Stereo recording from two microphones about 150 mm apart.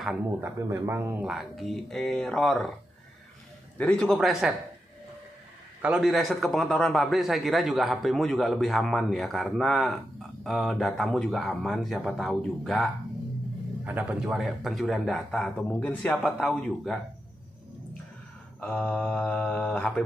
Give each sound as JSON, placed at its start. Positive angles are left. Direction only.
{"t": 0.0, "sound": "speech", "side_deg": -10}
{"t": 1.3, "sound": "a man's voice", "side_deg": 0}
{"t": 3.7, "sound": "a man's voice", "side_deg": 10}
{"t": 5.8, "sound": "a man's voice", "side_deg": -5}
{"t": 13.8, "sound": "a man's voice", "side_deg": -10}
{"t": 18.6, "sound": "mantra", "side_deg": 5}